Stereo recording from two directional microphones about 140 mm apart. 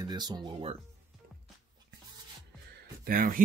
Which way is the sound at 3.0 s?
85° right.